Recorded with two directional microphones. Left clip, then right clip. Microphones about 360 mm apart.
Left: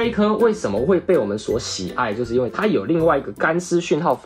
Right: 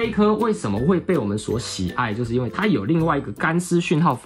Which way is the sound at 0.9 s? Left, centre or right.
Centre.